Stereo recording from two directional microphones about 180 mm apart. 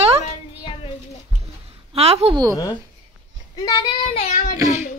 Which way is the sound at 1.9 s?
35° right (ahead or behind).